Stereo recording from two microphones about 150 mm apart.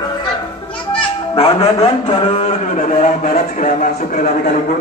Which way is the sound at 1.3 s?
40° left (ahead or behind).